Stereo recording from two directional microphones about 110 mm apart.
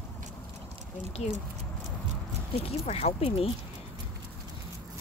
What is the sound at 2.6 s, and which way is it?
Speech, 70° left (ahead or behind).